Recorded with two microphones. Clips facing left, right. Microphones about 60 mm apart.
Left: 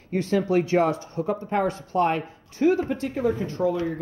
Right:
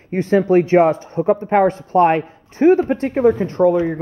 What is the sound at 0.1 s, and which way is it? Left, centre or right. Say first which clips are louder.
Speech: right 8 dB; right.